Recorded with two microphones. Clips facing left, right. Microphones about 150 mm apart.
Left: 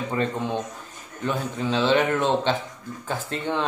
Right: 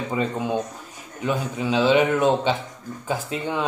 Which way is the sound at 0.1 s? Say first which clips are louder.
Right 2 dB; 10° right (ahead or behind).